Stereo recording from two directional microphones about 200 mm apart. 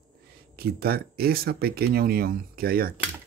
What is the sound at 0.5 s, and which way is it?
Speech, 50° right (ahead or behind).